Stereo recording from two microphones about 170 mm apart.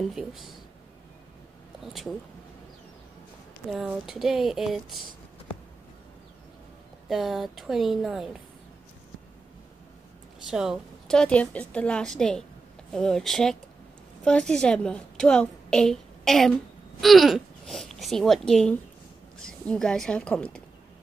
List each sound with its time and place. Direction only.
0.0 s a woman's voice: centre (ahead or behind)
3.7 s a woman's voice: centre (ahead or behind)
7.1 s a woman's voice: centre (ahead or behind)
10.4 s a woman's voice: 5° right (ahead or behind)